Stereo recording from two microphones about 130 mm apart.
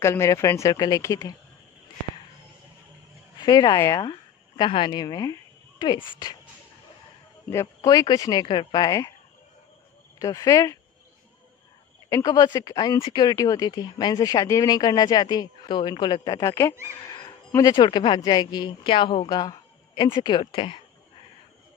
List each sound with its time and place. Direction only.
0.0 s speech: 20° left (ahead or behind)
3.3 s speech: 30° left (ahead or behind)
7.5 s speech: 25° left (ahead or behind)
10.1 s speech: 25° left (ahead or behind)
12.1 s speech: 25° left (ahead or behind)
17.0 s a sound: 30° left (ahead or behind)
17.5 s speech: 25° left (ahead or behind)
17.7 s speech: 40° left (ahead or behind)